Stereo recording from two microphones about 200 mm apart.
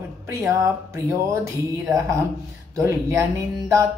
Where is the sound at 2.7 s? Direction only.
15° right (ahead or behind).